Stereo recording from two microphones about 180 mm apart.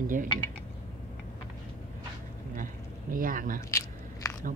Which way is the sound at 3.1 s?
50° right (ahead or behind).